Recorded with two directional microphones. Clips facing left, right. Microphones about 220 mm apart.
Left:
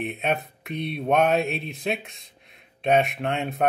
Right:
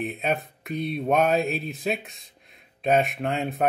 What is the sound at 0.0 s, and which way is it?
Mantra, centre (ahead or behind).